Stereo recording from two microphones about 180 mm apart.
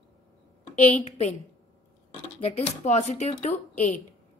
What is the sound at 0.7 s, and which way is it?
Speech, 35° left (ahead or behind).